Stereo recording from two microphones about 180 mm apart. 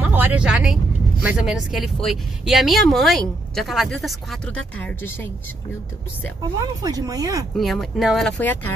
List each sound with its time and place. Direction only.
0.0 s speech: 10° right (ahead or behind); by 5.3 s 10° left (ahead or behind)
6.8 s speech: 20° right (ahead or behind)
7.5 s speech: centre (ahead or behind)